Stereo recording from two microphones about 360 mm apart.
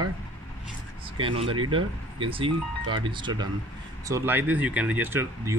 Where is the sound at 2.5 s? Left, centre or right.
Right.